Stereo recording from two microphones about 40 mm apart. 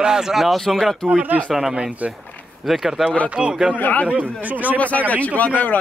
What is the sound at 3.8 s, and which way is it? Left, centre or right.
Speech, left.